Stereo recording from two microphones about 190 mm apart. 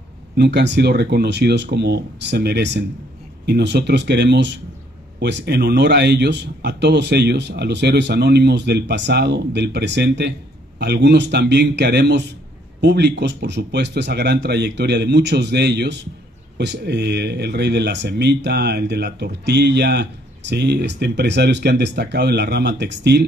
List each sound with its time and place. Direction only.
0.4 s speech: 60° right (ahead or behind)